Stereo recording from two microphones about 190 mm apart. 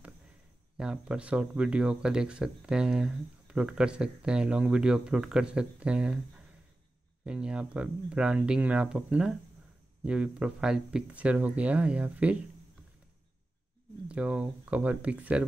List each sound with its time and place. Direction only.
0.7 s speech: 5° right (ahead or behind)
14.0 s speech: 5° right (ahead or behind)